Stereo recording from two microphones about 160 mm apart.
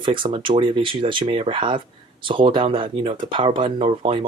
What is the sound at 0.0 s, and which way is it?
Speech, 30° right (ahead or behind).